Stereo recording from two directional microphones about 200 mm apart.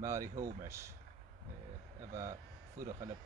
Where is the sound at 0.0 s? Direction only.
15° right (ahead or behind).